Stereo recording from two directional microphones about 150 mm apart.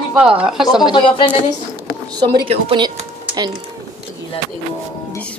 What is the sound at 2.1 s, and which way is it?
Speech, 30° right (ahead or behind).